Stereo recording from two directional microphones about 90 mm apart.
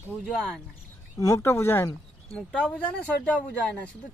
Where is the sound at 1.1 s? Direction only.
40° left (ahead or behind).